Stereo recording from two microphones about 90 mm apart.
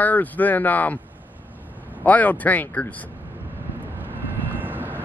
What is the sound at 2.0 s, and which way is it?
Speech, 15° left (ahead or behind).